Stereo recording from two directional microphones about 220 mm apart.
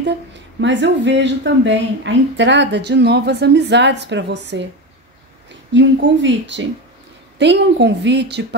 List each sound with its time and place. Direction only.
0.6 s a woman's voice: 55° right (ahead or behind)
5.7 s a woman's voice: 55° right (ahead or behind)